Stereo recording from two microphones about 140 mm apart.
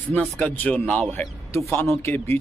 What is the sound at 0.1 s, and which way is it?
Speech, 10° left (ahead or behind).